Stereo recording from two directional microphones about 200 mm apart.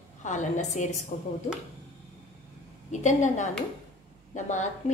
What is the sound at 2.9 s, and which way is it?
A woman's voice, 35° left (ahead or behind).